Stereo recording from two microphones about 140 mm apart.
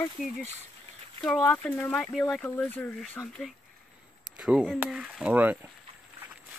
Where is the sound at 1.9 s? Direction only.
Centre (ahead or behind).